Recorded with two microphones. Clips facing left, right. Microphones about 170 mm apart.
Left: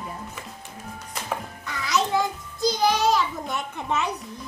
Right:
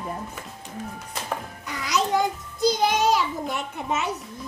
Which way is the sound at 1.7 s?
15° right (ahead or behind).